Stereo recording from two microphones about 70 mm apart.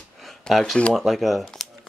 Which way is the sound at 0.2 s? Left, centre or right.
Centre.